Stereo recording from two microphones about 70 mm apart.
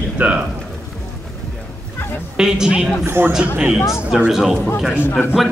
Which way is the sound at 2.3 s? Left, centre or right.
Centre.